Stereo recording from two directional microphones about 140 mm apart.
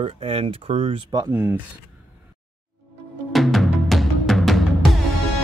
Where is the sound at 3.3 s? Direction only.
Centre (ahead or behind).